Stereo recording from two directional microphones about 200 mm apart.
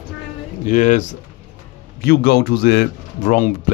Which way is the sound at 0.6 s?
40° left (ahead or behind).